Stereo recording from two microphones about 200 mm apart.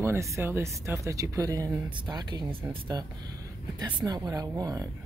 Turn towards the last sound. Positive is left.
turn(degrees=-20)  # may be behind; listen again after turning